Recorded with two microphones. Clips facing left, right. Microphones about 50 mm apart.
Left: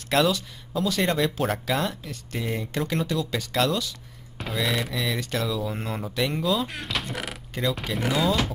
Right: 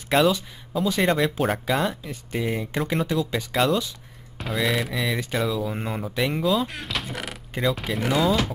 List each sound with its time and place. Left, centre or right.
0.1 s speech: centre
0.7 s speech: centre
1.0 s speech: centre
4.4 s speech: centre